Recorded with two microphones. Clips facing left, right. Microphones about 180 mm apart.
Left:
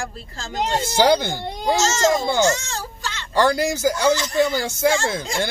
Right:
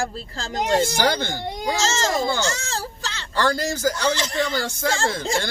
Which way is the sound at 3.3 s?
10° left (ahead or behind).